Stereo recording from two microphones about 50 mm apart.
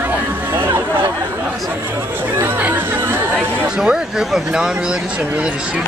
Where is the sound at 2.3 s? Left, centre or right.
Right.